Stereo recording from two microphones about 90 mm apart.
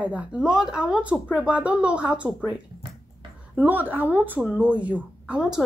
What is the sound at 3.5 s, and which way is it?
A woman's voice, 20° right (ahead or behind).